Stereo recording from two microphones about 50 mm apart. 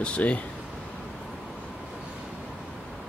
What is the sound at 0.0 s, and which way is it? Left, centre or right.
Speech, left.